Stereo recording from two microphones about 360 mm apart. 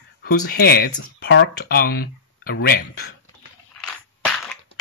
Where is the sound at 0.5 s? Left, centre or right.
Left.